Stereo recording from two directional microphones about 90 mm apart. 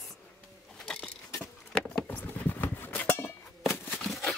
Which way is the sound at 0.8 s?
10° left (ahead or behind).